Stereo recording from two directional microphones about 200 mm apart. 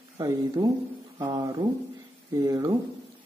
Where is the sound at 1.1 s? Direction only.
20° right (ahead or behind).